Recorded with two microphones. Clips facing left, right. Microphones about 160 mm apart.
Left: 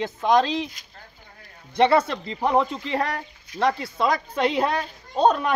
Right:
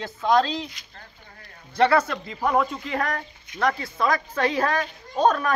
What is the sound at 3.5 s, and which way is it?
Speech, 35° left (ahead or behind).